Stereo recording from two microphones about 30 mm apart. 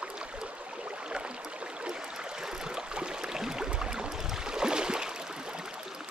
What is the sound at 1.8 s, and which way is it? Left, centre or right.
Stream, right.